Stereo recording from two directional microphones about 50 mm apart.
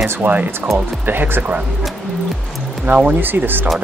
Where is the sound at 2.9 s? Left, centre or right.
Right.